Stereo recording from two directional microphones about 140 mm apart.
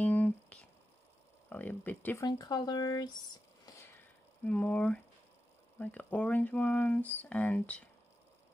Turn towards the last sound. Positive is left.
turn(degrees=10)  # may be behind; listen again after turning